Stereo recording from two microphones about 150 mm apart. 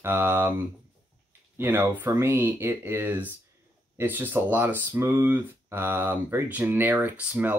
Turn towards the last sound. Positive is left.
turn(degrees=-10)  # may be behind; listen again after turning